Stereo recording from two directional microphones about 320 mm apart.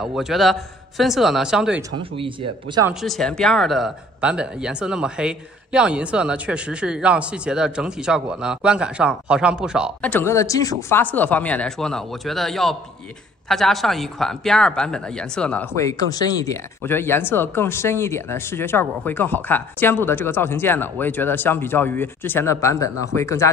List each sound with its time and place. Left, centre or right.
0.0 s speech: centre
2.1 s speech: centre
2.9 s speech: centre